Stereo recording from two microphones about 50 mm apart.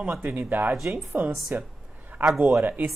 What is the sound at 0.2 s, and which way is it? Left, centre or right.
Speech, right.